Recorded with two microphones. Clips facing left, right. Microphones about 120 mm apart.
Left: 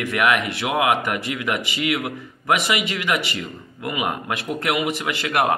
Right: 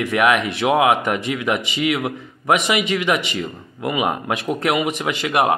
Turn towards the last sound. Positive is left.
turn(degrees=-20)  # may be behind; listen again after turning